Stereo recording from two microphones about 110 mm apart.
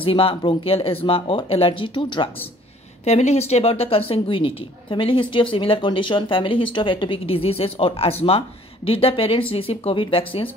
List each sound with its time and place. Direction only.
0.0 s speech: 55° left (ahead or behind)
3.1 s a woman's voice: 75° left (ahead or behind); by 10.5 s 55° left (ahead or behind)